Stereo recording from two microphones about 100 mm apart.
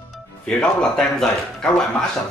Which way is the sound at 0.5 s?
10° left (ahead or behind).